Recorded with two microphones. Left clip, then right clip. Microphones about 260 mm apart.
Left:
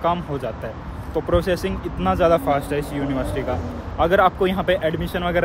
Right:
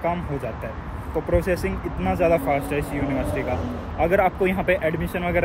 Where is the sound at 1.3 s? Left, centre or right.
Centre.